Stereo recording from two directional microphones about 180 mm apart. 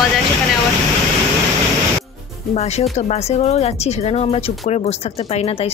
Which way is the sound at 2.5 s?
35° left (ahead or behind).